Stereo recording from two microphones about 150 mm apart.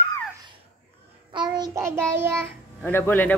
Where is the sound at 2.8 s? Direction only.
15° left (ahead or behind).